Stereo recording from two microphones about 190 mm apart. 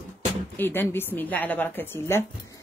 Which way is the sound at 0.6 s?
10° left (ahead or behind).